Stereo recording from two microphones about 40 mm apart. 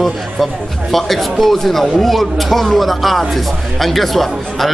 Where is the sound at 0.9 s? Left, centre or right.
Centre.